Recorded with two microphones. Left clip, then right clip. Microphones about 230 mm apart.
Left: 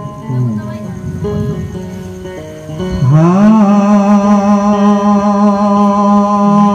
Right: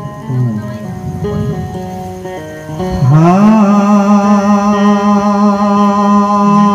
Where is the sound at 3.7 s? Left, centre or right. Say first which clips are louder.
Even; right.